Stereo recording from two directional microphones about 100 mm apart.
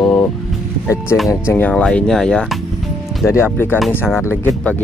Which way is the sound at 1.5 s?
15° left (ahead or behind).